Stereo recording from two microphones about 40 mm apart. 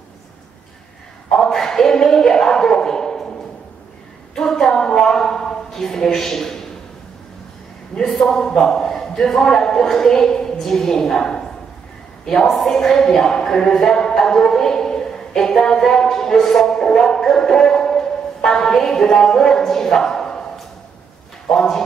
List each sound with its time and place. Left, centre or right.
1.3 s speech: centre
4.4 s a woman's voice: centre
8.3 s a man's voice: centre
15.9 s music: centre
21.5 s speech: centre